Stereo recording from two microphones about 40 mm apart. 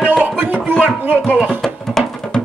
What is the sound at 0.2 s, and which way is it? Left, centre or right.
Music, right.